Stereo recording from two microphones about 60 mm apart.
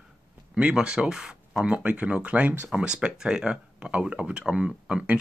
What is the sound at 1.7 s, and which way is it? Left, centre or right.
Speech, right.